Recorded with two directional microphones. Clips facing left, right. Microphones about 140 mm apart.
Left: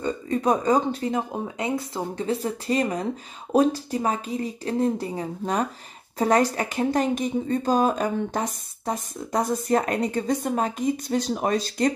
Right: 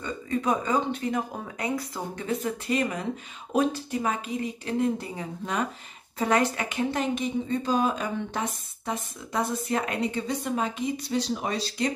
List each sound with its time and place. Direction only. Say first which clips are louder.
0.0 s speech: left 4 dB; 35° left (ahead or behind)